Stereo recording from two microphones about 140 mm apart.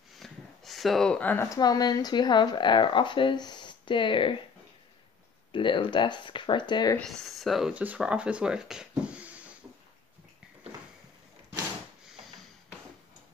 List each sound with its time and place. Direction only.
0.2 s a sound: centre (ahead or behind); by 1.6 s 15° left (ahead or behind)
1.6 s speech: 30° left (ahead or behind)
5.5 s speech: 35° left (ahead or behind)
7.0 s speech: centre (ahead or behind)